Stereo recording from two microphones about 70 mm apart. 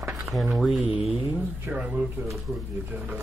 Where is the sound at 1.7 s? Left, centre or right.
Centre.